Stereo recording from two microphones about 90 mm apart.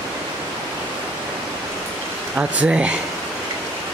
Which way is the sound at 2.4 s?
15° right (ahead or behind).